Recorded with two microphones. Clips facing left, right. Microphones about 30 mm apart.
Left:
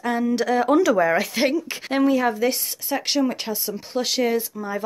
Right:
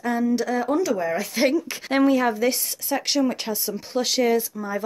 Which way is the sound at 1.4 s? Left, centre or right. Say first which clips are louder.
Right 4 dB; left.